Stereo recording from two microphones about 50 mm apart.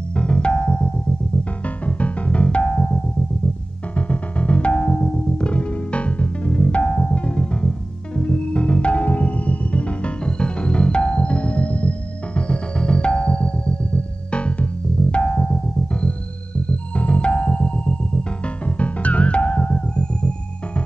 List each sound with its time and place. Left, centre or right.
0.1 s music: left